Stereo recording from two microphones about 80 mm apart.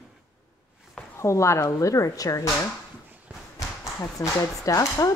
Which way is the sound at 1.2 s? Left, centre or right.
Left.